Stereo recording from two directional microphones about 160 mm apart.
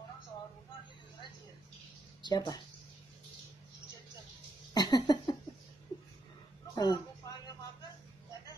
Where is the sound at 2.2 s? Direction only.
25° left (ahead or behind).